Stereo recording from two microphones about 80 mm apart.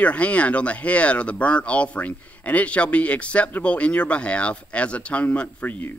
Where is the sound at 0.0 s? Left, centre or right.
Centre.